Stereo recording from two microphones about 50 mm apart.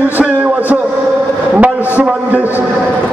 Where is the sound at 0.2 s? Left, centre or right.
Right.